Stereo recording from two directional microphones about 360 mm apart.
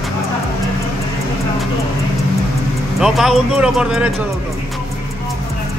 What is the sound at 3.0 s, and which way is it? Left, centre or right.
A man's voice, centre.